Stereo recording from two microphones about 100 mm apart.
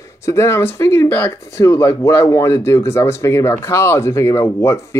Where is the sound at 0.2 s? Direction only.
30° left (ahead or behind).